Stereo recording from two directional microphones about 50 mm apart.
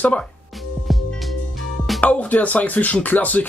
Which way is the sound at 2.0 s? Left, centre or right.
Left.